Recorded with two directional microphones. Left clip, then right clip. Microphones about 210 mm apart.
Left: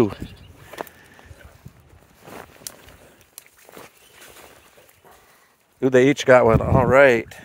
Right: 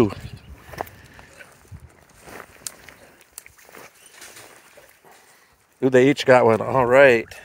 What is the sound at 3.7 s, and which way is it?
Walk, 35° left (ahead or behind).